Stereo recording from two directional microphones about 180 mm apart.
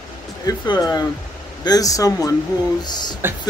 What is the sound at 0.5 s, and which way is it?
Speech, 20° left (ahead or behind).